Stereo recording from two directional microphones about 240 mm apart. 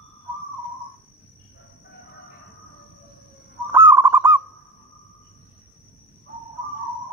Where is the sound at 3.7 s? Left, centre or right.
Centre.